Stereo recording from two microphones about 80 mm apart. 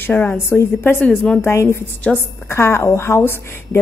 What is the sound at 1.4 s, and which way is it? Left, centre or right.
Speech, left.